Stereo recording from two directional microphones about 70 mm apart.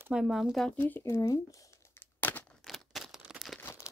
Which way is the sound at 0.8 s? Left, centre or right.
Left.